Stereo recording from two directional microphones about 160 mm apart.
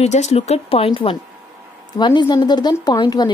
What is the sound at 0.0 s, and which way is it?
Speech, 45° left (ahead or behind).